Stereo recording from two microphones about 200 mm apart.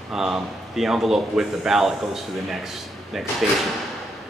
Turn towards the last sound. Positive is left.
turn(degrees=0)  # may be behind; listen again after turning